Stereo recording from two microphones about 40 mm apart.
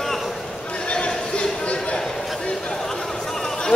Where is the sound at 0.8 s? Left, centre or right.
Left.